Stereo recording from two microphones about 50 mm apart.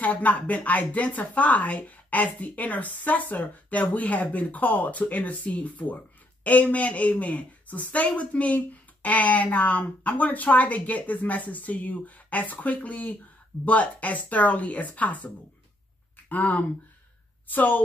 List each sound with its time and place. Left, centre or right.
0.0 s a woman's voice: left